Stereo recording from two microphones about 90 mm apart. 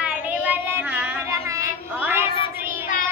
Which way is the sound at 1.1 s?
35° right (ahead or behind).